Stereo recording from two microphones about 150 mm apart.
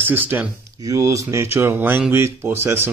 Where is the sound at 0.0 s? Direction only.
15° right (ahead or behind).